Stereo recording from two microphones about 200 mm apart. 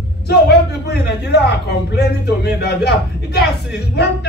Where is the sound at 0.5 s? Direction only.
55° left (ahead or behind).